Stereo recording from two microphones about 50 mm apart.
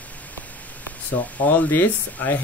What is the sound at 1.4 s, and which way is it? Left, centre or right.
Speech, left.